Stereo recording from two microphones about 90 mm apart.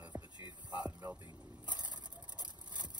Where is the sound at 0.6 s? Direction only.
50° right (ahead or behind).